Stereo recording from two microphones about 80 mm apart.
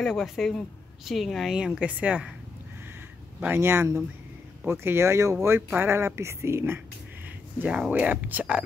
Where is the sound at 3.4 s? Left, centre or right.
Right.